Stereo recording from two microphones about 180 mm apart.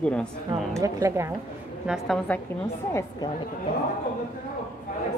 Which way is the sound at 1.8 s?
Centre (ahead or behind).